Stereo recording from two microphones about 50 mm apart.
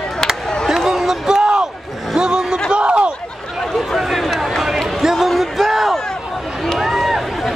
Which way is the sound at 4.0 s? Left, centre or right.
Centre.